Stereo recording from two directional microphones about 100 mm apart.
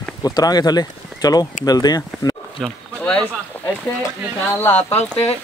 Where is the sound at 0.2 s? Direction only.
40° left (ahead or behind).